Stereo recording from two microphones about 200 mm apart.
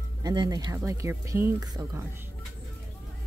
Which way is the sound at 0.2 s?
20° right (ahead or behind).